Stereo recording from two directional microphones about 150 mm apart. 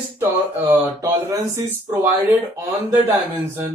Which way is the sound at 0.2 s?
15° right (ahead or behind).